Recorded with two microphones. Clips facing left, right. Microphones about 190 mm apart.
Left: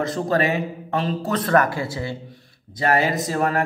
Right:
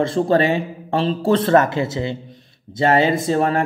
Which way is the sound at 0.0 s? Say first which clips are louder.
Right 5 dB; 30° right (ahead or behind).